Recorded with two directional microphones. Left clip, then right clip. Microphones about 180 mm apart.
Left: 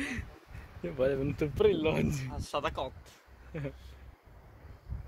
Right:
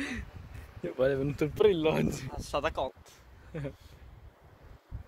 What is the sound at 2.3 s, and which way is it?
Speech, 50° right (ahead or behind).